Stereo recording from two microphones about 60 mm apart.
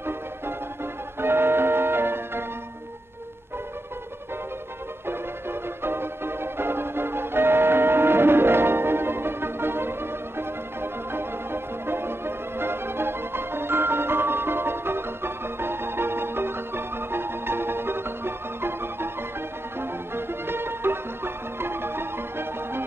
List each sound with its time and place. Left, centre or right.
1.2 s music: right
5.0 s music: right
20.2 s music: right